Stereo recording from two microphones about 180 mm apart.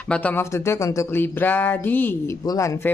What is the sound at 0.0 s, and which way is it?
Speech, 10° left (ahead or behind).